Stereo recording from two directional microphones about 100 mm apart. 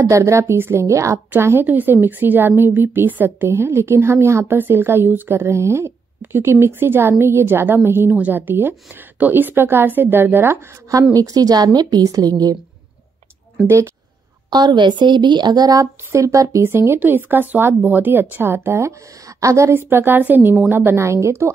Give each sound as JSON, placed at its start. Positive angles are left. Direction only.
{"t": 0.0, "sound": "a woman's voice", "side_deg": -30}
{"t": 11.1, "sound": "a woman's voice", "side_deg": -35}
{"t": 13.7, "sound": "a woman's voice", "side_deg": -30}
{"t": 14.5, "sound": "a woman's voice", "side_deg": -45}